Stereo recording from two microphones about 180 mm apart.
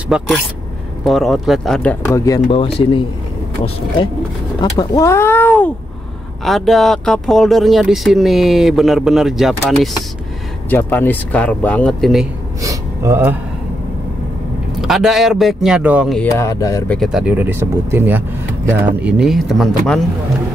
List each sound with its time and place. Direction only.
0.1 s speech: 5° right (ahead or behind); by 2.4 s 20° left (ahead or behind)
2.4 s speech: 30° left (ahead or behind)
4.6 s speech: 20° left (ahead or behind); by 9.8 s centre (ahead or behind)
10.7 s speech: 10° left (ahead or behind)
12.6 s gasp: 15° right (ahead or behind)
14.8 s speech: centre (ahead or behind)
16.2 s speech: 15° left (ahead or behind)
16.9 s speech: centre (ahead or behind)